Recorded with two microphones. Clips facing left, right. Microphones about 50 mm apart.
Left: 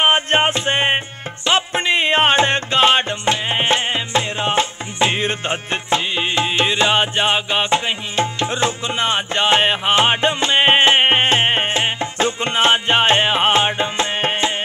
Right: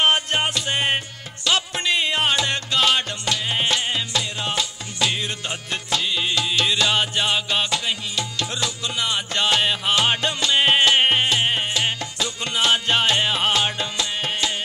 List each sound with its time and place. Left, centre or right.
0.0 s music: left